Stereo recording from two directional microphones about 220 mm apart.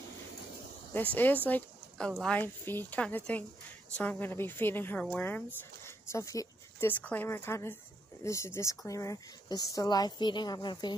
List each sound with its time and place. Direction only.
0.9 s speech: 10° left (ahead or behind)